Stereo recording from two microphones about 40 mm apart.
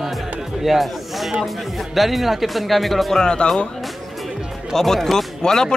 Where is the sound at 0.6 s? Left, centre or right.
Centre.